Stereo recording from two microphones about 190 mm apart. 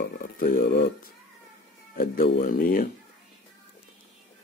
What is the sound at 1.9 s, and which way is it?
Speech, 50° left (ahead or behind).